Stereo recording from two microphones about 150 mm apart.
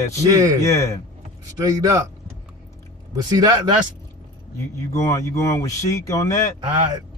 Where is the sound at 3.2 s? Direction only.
25° right (ahead or behind).